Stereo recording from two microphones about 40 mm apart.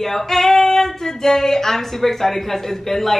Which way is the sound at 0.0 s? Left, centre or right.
Centre.